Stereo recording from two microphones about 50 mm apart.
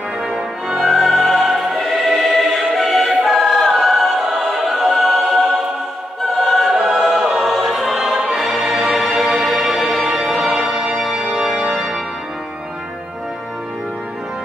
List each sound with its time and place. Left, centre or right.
0.7 s music: centre
4.3 s choir: centre
6.4 s choir: centre
7.0 s music: centre
10.0 s organ: centre